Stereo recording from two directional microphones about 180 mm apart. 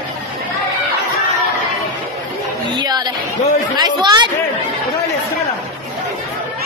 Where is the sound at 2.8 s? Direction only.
25° right (ahead or behind).